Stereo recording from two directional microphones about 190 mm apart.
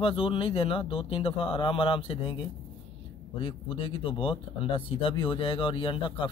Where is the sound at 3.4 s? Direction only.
25° left (ahead or behind).